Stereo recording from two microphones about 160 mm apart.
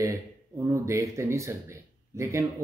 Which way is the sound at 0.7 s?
20° right (ahead or behind).